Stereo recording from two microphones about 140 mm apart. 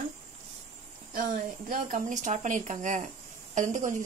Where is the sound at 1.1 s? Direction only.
75° right (ahead or behind).